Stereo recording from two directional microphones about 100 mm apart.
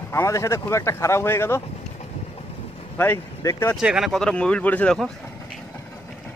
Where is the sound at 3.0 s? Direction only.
15° left (ahead or behind).